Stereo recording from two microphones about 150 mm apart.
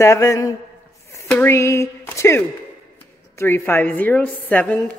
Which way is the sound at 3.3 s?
15° left (ahead or behind).